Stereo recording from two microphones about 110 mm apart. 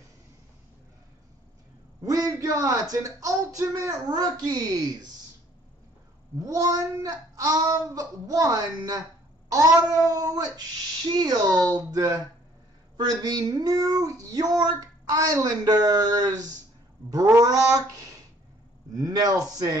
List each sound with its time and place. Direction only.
2.0 s speech: 35° right (ahead or behind)
6.4 s speech: 30° right (ahead or behind)